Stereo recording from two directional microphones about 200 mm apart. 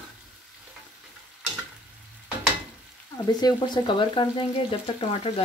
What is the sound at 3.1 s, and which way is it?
Frying, 20° left (ahead or behind).